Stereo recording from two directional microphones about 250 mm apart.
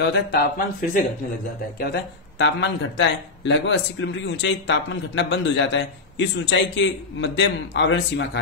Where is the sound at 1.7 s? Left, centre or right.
Left.